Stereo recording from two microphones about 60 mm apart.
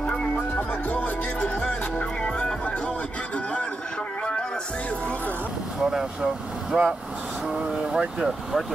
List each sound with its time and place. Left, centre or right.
0.0 s music: centre
0.6 s music: left
5.8 s vehicle: centre
7.4 s speech: centre